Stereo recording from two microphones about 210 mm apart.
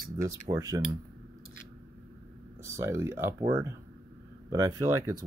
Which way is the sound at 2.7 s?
10° right (ahead or behind).